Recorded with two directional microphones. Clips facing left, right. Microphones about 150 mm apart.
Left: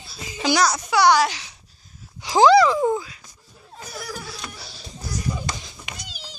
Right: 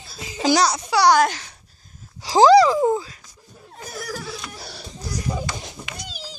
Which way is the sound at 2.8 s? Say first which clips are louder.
Right 2 dB; 25° right (ahead or behind).